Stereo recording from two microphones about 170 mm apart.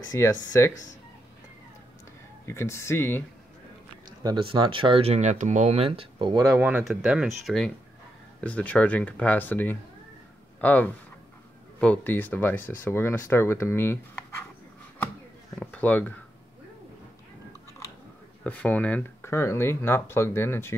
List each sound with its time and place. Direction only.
0.1 s speech: 15° left (ahead or behind)
2.4 s speech: 15° left (ahead or behind)
4.2 s speech: 25° right (ahead or behind)
6.6 s speech: 5° right (ahead or behind); by 14.4 s 15° left (ahead or behind)
15.6 s speech: 10° left (ahead or behind)
17.5 s biting: 15° left (ahead or behind)
18.4 s speech: 10° left (ahead or behind)